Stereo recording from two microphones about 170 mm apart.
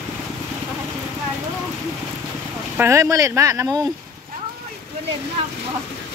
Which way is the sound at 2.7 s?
15° right (ahead or behind).